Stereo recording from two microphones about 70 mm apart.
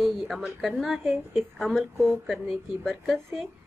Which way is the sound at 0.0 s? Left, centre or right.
Centre.